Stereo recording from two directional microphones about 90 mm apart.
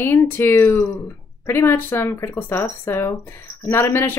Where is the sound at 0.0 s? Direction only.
25° left (ahead or behind).